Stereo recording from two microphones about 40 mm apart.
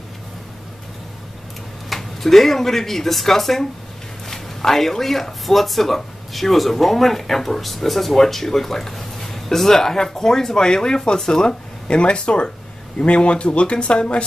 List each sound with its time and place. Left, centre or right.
1.9 s speech: centre; by 14.2 s left